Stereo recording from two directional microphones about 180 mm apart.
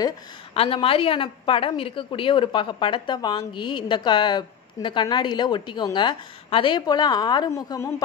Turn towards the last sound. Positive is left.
turn(degrees=20)  # may be behind; listen again after turning